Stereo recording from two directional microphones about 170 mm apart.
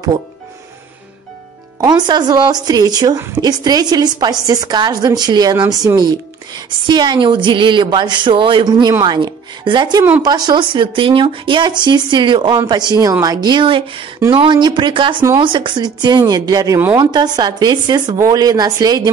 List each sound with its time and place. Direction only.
1.8 s a woman's voice: 25° right (ahead or behind)